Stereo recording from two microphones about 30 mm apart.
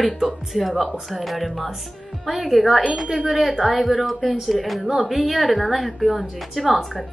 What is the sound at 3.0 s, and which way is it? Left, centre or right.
Speech, centre.